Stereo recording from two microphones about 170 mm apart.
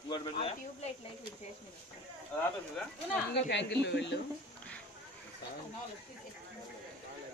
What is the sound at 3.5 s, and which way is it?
Speech, 85° left.